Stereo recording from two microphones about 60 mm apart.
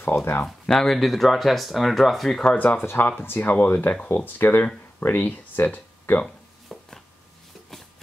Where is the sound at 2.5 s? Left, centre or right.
Left.